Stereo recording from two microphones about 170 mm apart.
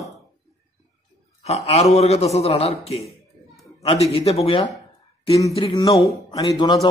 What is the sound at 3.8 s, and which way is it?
A man's voice, 35° left (ahead or behind).